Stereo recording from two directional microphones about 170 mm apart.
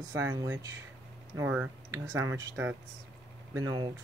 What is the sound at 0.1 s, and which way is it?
Speech, 20° right (ahead or behind).